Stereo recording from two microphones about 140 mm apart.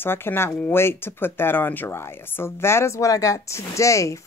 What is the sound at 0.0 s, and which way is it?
A woman's voice, 15° left (ahead or behind).